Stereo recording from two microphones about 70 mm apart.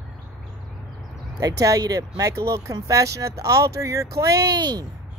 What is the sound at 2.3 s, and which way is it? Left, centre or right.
Speech, right.